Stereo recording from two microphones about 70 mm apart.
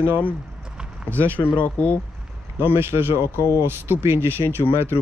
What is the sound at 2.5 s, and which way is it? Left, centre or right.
Speech, right.